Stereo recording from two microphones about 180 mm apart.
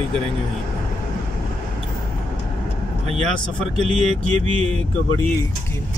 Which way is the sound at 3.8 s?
40° right (ahead or behind).